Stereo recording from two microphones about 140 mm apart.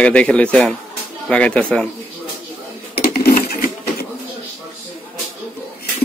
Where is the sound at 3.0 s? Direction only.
90° left.